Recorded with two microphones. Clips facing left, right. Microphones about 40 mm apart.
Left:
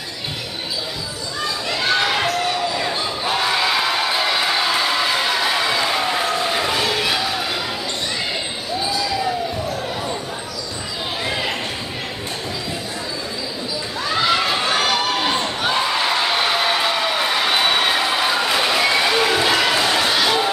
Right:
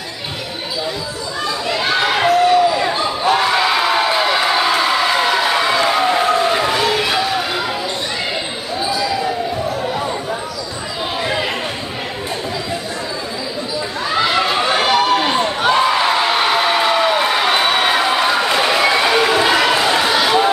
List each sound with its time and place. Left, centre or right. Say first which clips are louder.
1.4 s basketball bounce: right 3 dB; centre
8.7 s basketball bounce: right 3 dB; centre
11.2 s basketball bounce: right 3 dB; centre
14.0 s a sound: right 2 dB; centre